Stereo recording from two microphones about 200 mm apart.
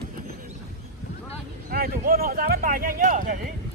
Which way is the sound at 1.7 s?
45° right (ahead or behind).